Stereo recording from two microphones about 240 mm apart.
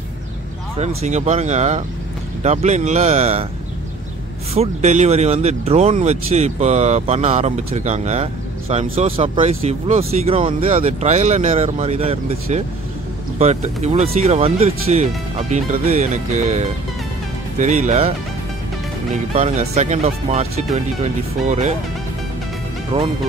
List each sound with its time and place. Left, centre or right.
0.7 s speech: right
4.6 s speech: right
19.3 s speech: right
22.9 s speech: right